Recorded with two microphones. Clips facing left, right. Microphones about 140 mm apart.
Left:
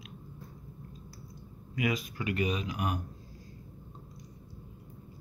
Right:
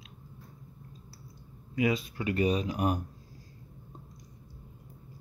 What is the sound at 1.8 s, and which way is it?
Speech, 30° right (ahead or behind).